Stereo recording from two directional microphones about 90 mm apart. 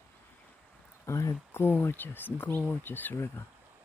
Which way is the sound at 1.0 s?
35° left (ahead or behind).